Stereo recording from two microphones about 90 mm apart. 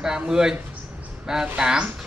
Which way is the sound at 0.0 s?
5° right (ahead or behind).